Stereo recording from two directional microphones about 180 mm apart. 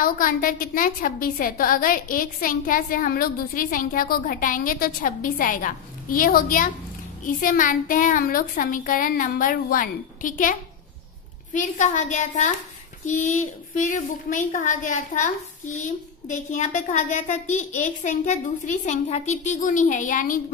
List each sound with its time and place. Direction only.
0.0 s a woman's voice: 50° left (ahead or behind)